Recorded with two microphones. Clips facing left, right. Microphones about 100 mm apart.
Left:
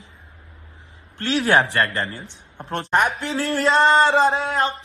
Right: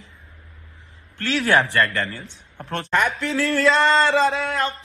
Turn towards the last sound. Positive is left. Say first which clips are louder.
# left 2 dB
turn(degrees=25)  # may be behind; listen again after turning